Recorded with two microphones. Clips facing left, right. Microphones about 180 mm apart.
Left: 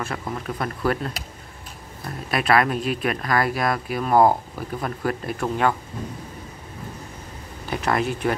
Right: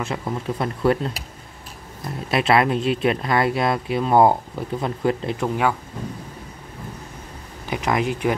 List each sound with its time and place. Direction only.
0.0 s speech: 20° right (ahead or behind)
7.6 s speech: 15° right (ahead or behind)